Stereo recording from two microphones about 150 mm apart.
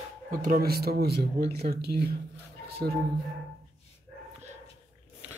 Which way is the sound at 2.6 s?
90° right.